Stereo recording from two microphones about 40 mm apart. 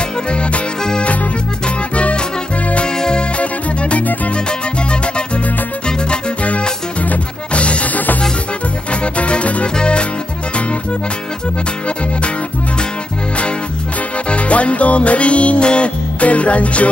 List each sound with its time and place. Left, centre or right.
0.3 s music: left
7.1 s music: left
9.0 s music: left
14.3 s music: left